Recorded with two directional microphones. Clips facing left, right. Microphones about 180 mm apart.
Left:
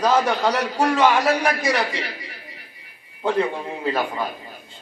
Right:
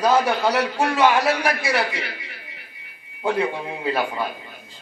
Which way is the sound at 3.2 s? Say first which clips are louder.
Left 1 dB; 10° right (ahead or behind).